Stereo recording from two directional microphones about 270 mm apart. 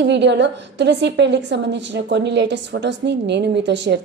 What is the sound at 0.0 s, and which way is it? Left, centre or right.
A woman's voice, right.